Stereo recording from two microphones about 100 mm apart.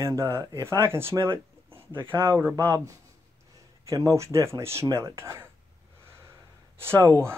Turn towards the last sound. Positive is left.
turn(degrees=-35)  # may be behind; listen again after turning